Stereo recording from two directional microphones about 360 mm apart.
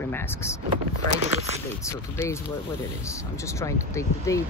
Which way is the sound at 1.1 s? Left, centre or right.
Centre.